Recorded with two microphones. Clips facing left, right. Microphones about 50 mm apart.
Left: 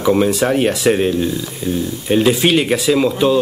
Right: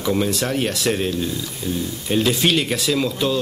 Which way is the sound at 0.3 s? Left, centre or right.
Centre.